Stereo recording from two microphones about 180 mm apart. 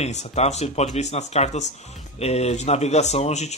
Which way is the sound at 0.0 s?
40° left (ahead or behind).